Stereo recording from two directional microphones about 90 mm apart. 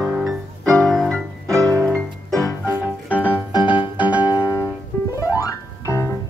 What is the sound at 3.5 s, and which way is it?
Music, 65° left (ahead or behind).